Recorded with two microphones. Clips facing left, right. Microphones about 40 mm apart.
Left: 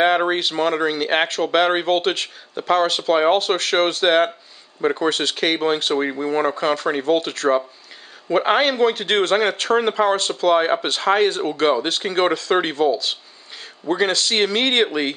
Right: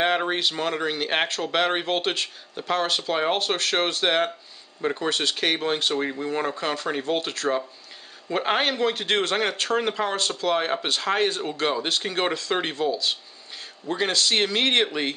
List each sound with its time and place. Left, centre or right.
0.0 s speech: left
2.0 s speech: left
10.4 s speech: left
14.8 s speech: left